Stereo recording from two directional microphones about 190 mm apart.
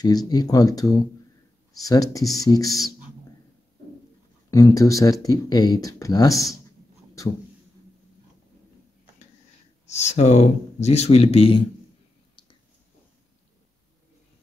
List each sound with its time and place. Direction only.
0.0 s speech: 20° left (ahead or behind)
2.7 s speech: centre (ahead or behind)
4.5 s speech: 20° left (ahead or behind)
9.9 s speech: 35° left (ahead or behind)